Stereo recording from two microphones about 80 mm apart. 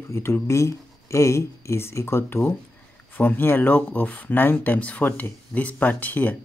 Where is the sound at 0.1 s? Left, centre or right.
Left.